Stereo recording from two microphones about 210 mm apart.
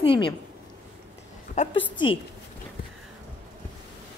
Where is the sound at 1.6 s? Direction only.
35° left (ahead or behind).